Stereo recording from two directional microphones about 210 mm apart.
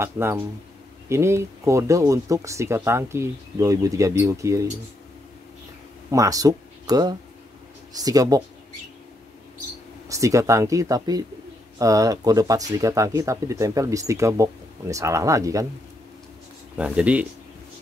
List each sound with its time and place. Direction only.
0.0 s speech: 10° right (ahead or behind)
6.0 s speech: 15° right (ahead or behind)
10.0 s speech: 15° right (ahead or behind)
16.7 s speech: 5° right (ahead or behind)